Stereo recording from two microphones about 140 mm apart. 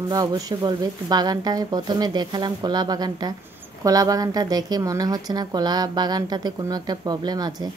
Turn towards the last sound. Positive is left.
turn(degrees=-30)  # may be behind; listen again after turning